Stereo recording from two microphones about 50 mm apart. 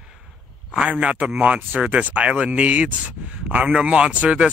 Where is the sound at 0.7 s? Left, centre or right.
Right.